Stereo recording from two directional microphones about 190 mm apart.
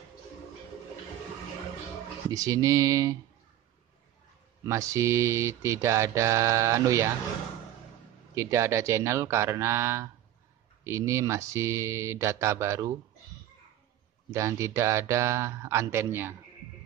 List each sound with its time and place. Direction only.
2.3 s mantra: 20° right (ahead or behind)
4.6 s mantra: 15° right (ahead or behind)
8.4 s mantra: 15° right (ahead or behind)
14.3 s mantra: 15° right (ahead or behind)